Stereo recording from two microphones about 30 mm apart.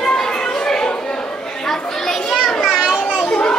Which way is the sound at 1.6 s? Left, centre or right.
Centre.